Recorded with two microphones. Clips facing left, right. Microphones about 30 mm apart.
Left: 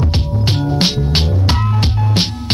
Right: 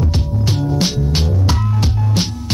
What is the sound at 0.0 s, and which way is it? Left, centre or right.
Music, left.